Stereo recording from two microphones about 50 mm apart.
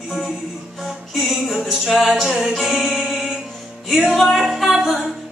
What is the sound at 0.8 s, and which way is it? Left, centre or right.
Music, centre.